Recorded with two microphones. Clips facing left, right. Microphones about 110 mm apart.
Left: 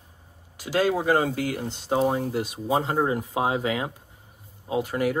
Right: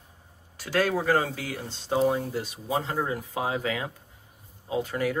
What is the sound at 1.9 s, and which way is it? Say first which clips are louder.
Speech: left 1 dB; 40° left (ahead or behind).